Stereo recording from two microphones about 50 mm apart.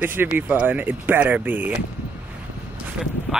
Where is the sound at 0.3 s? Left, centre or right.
Right.